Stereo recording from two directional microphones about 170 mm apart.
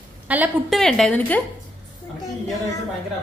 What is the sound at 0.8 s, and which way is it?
Speech, centre (ahead or behind).